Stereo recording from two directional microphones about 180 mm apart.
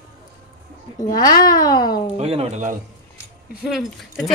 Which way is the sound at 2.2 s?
35° right (ahead or behind).